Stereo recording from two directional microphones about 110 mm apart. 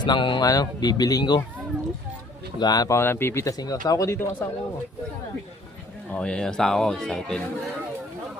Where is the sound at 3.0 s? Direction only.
20° left (ahead or behind).